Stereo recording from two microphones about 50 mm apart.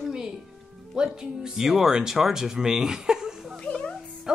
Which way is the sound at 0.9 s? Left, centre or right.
Centre.